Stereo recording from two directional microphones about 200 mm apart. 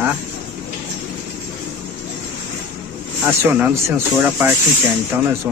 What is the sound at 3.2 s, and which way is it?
Speech, 10° right (ahead or behind).